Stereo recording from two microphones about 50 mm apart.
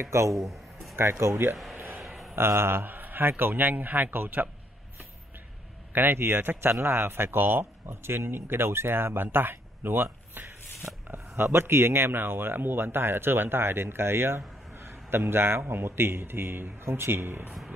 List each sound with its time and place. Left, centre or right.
0.0 s speech: right
0.5 s a sound: centre
0.9 s speech: right
2.0 s a sound: centre
2.3 s a man's voice: right
5.9 s speech: right